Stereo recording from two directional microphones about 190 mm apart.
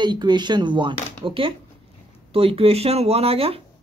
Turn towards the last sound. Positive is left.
turn(degrees=-30)  # may be behind; listen again after turning